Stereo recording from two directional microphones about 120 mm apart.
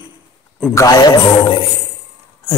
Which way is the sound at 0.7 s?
30° left (ahead or behind).